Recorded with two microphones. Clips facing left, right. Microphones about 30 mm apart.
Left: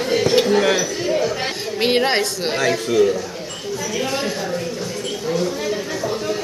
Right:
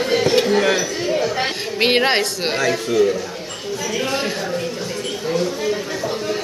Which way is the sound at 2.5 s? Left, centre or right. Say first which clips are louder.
Left 1 dB; centre.